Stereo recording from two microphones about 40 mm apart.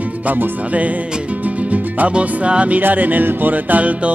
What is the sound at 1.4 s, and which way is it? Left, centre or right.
Music, right.